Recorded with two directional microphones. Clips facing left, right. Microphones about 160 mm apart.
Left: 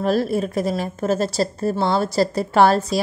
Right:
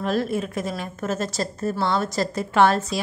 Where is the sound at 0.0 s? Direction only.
35° left (ahead or behind).